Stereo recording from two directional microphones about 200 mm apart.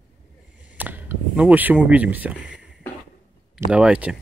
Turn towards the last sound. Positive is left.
turn(degrees=-5)  # may be behind; listen again after turning